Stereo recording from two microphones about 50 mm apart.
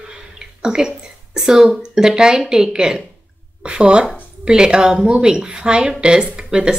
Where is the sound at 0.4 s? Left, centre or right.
Centre.